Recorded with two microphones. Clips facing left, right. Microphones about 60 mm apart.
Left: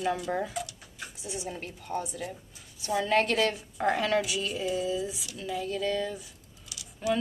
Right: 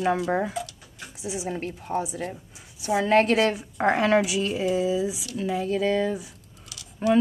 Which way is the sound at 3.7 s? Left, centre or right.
Right.